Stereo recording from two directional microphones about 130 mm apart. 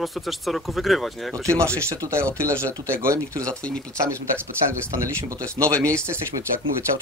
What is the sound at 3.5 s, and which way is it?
Speech, 10° left (ahead or behind).